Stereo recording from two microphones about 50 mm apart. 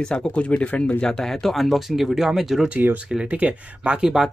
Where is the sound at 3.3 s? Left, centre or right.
Right.